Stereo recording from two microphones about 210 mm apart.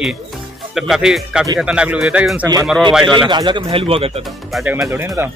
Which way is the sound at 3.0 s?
20° right (ahead or behind).